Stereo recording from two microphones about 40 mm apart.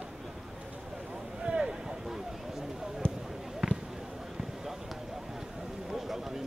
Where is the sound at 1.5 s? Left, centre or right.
Centre.